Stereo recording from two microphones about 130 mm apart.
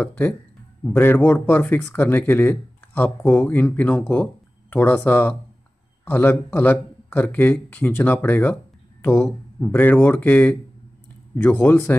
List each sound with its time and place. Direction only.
0.8 s speech: 15° left (ahead or behind)